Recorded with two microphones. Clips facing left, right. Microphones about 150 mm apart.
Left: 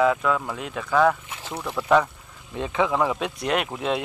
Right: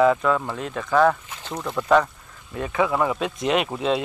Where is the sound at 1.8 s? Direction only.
5° left (ahead or behind).